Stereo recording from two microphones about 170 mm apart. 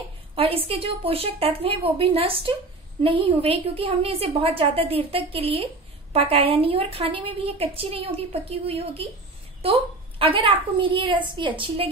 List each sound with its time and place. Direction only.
0.4 s a woman's voice: 35° right (ahead or behind)